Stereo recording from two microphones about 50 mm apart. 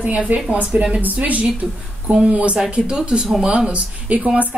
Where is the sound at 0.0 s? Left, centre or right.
Right.